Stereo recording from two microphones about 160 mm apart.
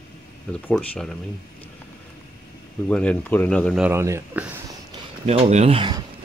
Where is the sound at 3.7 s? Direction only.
15° right (ahead or behind).